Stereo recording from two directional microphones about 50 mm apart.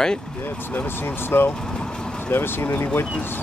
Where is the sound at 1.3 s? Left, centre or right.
Left.